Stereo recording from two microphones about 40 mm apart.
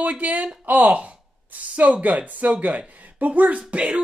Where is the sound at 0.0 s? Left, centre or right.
Right.